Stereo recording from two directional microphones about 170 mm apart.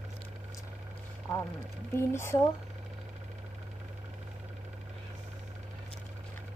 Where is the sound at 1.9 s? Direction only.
15° left (ahead or behind).